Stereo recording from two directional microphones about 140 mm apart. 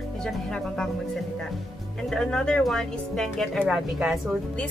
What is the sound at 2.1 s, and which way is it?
Speech, 5° left (ahead or behind).